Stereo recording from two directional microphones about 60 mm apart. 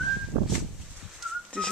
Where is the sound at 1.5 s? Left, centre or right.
Centre.